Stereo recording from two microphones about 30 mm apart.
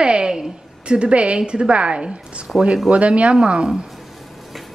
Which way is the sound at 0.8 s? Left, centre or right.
Right.